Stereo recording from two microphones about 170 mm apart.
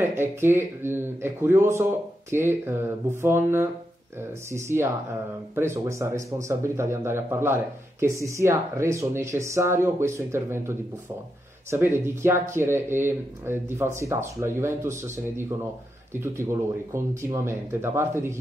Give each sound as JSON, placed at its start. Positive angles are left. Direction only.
{"t": 0.0, "sound": "speech", "side_deg": -15}